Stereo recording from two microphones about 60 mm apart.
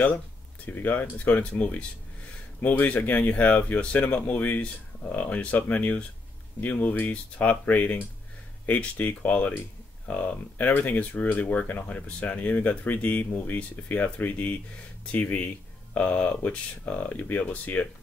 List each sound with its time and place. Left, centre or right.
0.7 s speech: left